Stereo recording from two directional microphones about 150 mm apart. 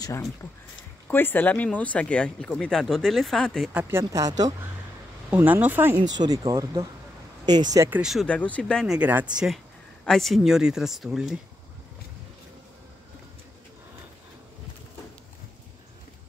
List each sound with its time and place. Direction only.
1.1 s speech: 15° left (ahead or behind)
3.7 s speech: 20° right (ahead or behind)
5.3 s speech: 10° right (ahead or behind)
6.1 s speech: 25° right (ahead or behind)
7.9 s speech: 5° right (ahead or behind)